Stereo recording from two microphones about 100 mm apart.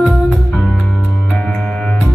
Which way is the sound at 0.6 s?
5° left (ahead or behind).